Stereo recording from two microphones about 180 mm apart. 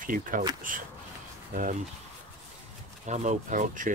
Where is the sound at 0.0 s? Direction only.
50° right (ahead or behind).